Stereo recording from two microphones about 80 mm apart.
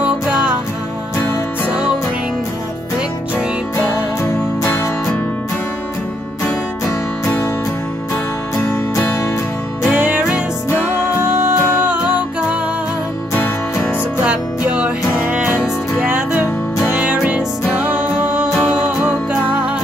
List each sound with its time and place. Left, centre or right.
0.0 s music: centre
9.8 s music: centre
11.4 s music: centre
14.2 s music: centre
17.0 s music: centre